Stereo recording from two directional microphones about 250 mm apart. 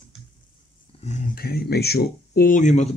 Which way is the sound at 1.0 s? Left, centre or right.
Left.